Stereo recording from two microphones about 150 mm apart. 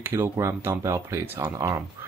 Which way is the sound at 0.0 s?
15° right (ahead or behind).